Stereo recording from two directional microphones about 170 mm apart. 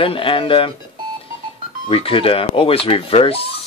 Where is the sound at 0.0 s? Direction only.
30° left (ahead or behind).